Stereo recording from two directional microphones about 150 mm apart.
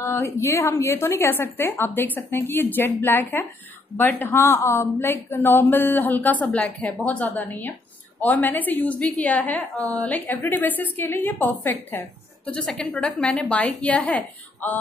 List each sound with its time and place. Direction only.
0.0 s speech: 20° left (ahead or behind)